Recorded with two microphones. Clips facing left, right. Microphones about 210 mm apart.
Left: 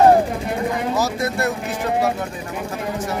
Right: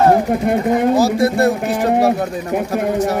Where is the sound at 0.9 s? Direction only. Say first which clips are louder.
Right 8 dB; 30° right (ahead or behind).